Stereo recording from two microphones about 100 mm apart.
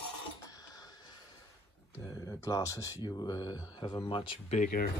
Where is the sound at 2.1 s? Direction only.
30° left (ahead or behind); by 4.4 s 60° left (ahead or behind).